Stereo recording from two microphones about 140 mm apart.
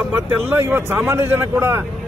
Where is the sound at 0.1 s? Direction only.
15° right (ahead or behind).